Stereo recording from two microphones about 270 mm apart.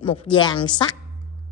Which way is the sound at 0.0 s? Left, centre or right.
Centre.